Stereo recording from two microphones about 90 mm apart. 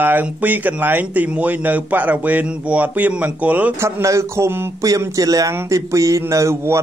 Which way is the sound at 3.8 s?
35° right (ahead or behind).